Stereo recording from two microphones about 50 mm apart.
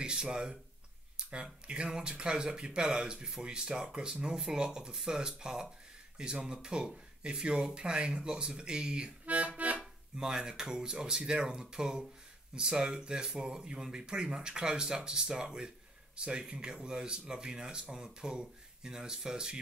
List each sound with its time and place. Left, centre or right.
0.0 s speech: centre
9.2 s accordion: right
9.8 s speech: centre